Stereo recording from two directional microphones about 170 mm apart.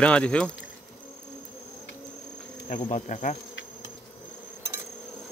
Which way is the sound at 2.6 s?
40° left (ahead or behind).